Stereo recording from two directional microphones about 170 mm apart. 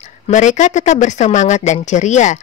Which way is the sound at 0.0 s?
45° left (ahead or behind).